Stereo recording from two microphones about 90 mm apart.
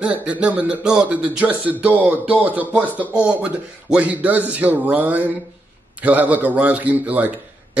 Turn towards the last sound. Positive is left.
turn(degrees=-15)  # may be behind; listen again after turning